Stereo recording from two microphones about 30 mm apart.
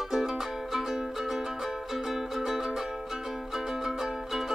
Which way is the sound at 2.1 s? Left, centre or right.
Centre.